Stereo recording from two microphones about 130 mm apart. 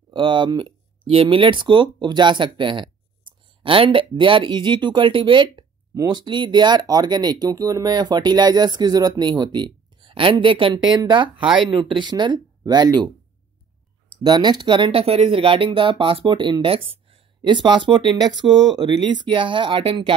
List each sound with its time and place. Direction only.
0.1 s speech: 35° right (ahead or behind)
11.4 s speech: 5° right (ahead or behind)
11.7 s speech: 35° right (ahead or behind)
14.2 s speech: 35° right (ahead or behind)